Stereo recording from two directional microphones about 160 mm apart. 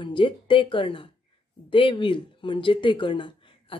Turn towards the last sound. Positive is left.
turn(degrees=30)  # may be behind; listen again after turning